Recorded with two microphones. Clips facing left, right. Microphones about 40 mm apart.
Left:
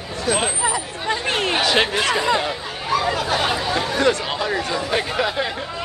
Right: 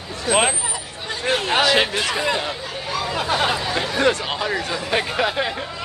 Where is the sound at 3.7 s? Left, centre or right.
Centre.